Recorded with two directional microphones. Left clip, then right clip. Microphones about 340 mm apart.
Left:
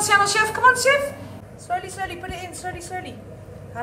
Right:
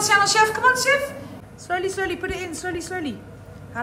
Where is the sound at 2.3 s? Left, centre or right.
Right.